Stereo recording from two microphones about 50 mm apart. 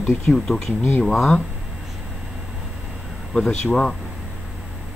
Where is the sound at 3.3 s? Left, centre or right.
Centre.